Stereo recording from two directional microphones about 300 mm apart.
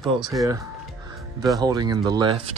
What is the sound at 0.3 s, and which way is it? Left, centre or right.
Speech, centre.